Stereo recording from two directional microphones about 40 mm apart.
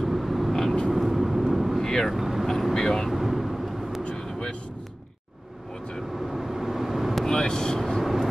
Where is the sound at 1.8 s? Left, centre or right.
Centre.